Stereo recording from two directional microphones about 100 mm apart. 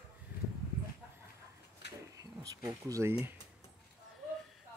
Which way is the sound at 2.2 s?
35° right (ahead or behind).